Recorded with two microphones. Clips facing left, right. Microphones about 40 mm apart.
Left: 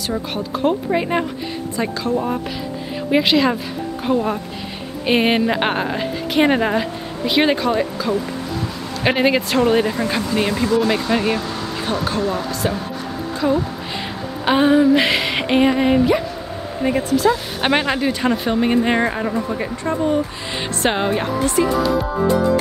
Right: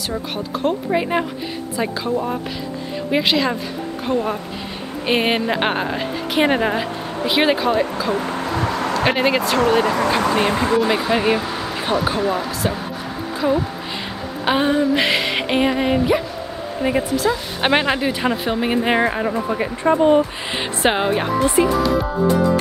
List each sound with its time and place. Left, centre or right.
0.1 s speech: centre
8.5 s a sound: right
9.1 s speech: centre
9.6 s speech: right
10.3 s speech: right
10.8 s speech: centre; by 20.2 s right
20.2 s speech: centre